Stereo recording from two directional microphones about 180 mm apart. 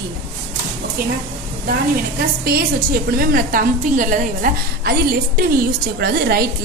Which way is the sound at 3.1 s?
55° right (ahead or behind).